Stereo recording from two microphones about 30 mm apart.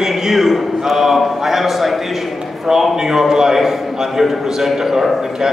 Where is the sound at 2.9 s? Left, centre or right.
Centre.